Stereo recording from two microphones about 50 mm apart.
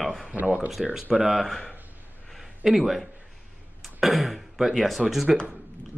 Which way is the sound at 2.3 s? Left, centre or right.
Centre.